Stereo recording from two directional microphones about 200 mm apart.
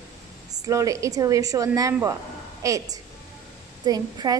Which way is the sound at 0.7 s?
15° right (ahead or behind).